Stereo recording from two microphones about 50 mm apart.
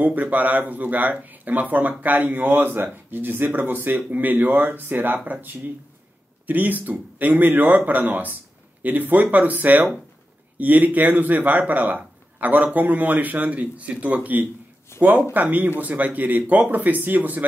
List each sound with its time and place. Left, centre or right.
0.0 s speech: right